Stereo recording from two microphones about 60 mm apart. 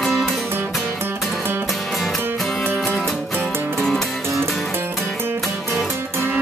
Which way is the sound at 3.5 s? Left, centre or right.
Right.